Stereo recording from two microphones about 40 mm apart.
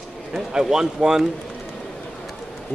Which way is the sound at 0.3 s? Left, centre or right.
Centre.